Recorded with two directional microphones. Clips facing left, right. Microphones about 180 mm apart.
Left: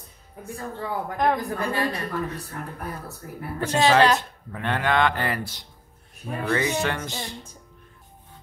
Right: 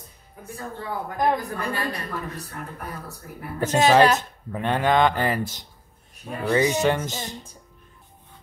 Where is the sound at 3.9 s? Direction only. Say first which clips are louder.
Right 2 dB; 15° right (ahead or behind).